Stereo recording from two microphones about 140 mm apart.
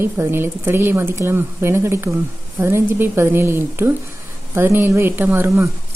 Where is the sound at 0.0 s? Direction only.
15° right (ahead or behind).